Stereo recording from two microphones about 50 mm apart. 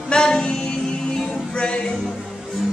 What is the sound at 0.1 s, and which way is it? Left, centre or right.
Music, centre.